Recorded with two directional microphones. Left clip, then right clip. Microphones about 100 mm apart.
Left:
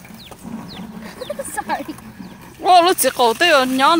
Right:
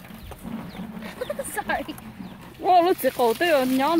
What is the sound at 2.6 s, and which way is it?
Speech, 15° right (ahead or behind).